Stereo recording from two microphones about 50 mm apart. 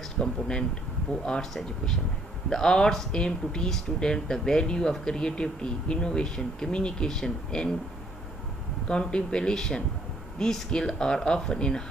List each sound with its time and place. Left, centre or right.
0.2 s speech: centre
1.4 s speech: centre
8.8 s speech: centre